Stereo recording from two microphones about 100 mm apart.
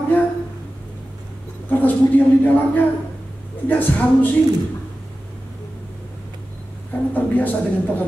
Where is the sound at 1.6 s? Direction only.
15° left (ahead or behind).